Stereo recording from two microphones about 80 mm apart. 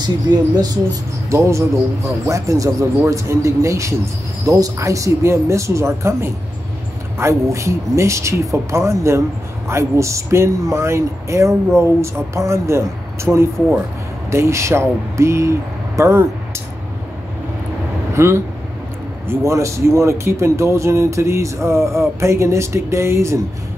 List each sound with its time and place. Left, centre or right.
0.3 s speech: right
1.3 s speech: right
18.1 s speech: right